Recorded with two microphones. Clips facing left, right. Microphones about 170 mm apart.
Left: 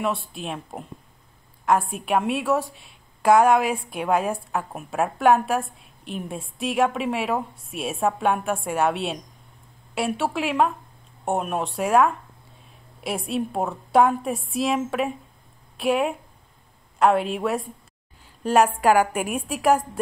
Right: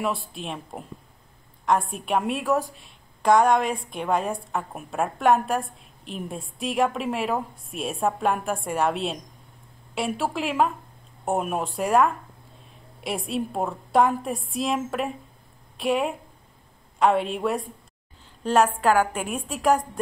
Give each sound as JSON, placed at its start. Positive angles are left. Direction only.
{"t": 0.0, "sound": "a woman's voice", "side_deg": 0}